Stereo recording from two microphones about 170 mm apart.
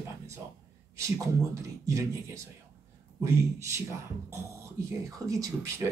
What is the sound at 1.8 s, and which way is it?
Speech, 20° right (ahead or behind).